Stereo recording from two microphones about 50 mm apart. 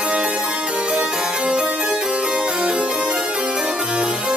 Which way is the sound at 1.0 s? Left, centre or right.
Centre.